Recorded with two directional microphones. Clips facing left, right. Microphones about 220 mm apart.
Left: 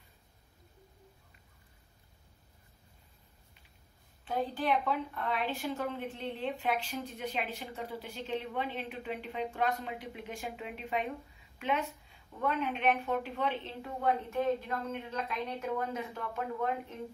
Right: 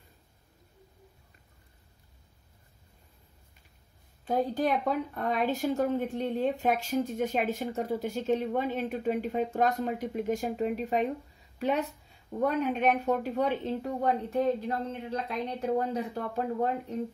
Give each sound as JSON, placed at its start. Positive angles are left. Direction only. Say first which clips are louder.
{"t": 4.2, "sound": "a woman's voice", "louder": "right 6 dB", "side_deg": -45}